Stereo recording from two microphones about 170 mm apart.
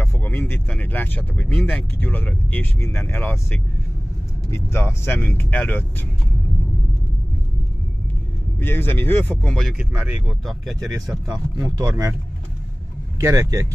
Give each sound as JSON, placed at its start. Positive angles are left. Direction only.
{"t": 0.0, "sound": "speech", "side_deg": 10}
{"t": 8.5, "sound": "speech", "side_deg": 15}
{"t": 9.8, "sound": "speech", "side_deg": -10}
{"t": 11.2, "sound": "speech", "side_deg": -20}
{"t": 13.2, "sound": "speech", "side_deg": -20}